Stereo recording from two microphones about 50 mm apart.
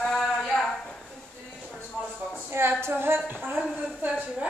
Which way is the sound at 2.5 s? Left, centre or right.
Right.